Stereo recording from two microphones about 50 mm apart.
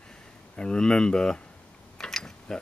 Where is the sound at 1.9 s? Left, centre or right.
Centre.